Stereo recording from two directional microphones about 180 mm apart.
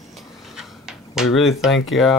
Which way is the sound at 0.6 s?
5° right (ahead or behind).